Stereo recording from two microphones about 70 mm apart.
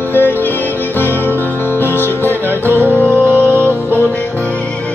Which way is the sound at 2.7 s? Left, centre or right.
Left.